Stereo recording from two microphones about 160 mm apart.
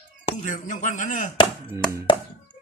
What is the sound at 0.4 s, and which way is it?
Speech, 55° left (ahead or behind).